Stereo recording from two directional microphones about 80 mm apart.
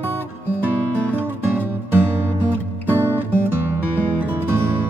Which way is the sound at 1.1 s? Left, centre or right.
Right.